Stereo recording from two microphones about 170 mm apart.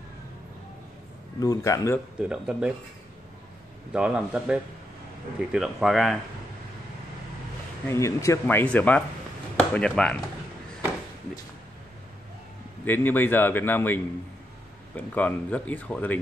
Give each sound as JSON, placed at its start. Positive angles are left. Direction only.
{"t": 1.4, "sound": "speech", "side_deg": 20}
{"t": 2.1, "sound": "speech", "side_deg": -5}
{"t": 3.9, "sound": "speech", "side_deg": -5}
{"t": 7.8, "sound": "speech", "side_deg": 15}
{"t": 12.8, "sound": "speech", "side_deg": 10}